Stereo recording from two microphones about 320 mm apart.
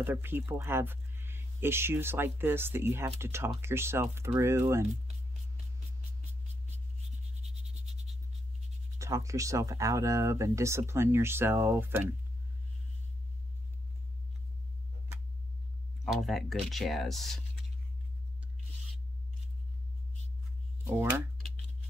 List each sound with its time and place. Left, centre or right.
0.0 s speech: centre
8.9 s speech: centre
16.1 s speech: centre
20.8 s a sound: centre